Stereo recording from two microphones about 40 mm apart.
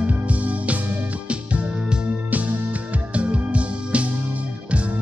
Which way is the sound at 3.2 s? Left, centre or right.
Right.